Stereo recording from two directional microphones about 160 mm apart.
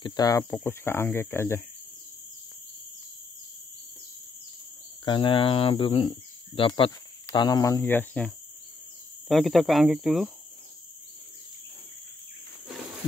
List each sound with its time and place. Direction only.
0.0 s speech: 25° left (ahead or behind)
5.0 s speech: 30° left (ahead or behind); by 8.3 s 10° left (ahead or behind)
9.3 s speech: centre (ahead or behind)